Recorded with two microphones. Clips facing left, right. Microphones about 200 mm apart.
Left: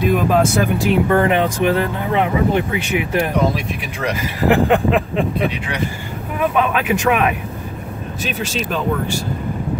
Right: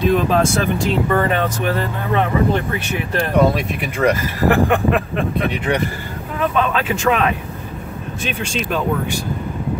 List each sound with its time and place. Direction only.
0.1 s speech: 10° left (ahead or behind)
3.3 s speech: 55° right (ahead or behind)
4.2 s speech: 15° left (ahead or behind)
6.4 s speech: 15° left (ahead or behind)
8.2 s speech: 5° left (ahead or behind)